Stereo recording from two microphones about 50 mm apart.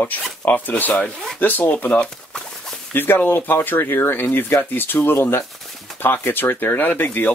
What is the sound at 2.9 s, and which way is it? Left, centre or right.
Speech, left.